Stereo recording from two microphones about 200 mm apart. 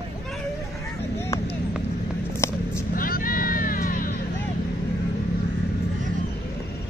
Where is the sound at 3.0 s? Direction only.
45° left (ahead or behind).